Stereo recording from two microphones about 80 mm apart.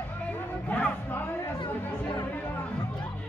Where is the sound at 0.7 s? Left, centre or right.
Centre.